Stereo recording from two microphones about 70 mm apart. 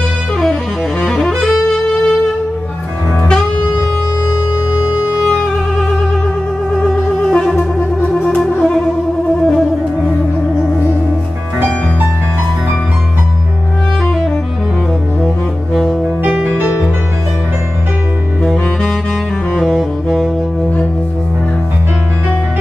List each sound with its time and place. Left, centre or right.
1.0 s music: centre
6.8 s music: centre
15.7 s music: centre
16.4 s music: right
18.4 s saxophone: centre